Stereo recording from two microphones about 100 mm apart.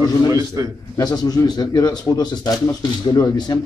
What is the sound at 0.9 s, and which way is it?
Speech, 40° left (ahead or behind).